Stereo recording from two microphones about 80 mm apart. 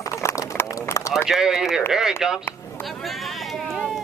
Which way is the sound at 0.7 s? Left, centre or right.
Left.